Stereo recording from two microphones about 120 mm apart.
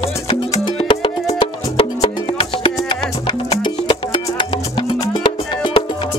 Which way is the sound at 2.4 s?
45° left (ahead or behind).